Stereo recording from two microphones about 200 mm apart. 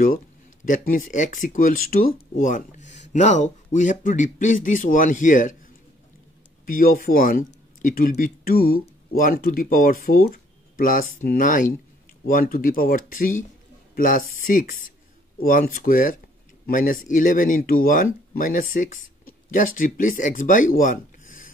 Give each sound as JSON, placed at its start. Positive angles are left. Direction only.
{"t": 0.7, "sound": "speech", "side_deg": 40}
{"t": 6.6, "sound": "speech", "side_deg": 45}